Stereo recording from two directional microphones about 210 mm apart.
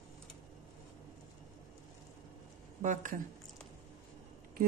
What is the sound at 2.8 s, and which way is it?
Speech, 35° right (ahead or behind).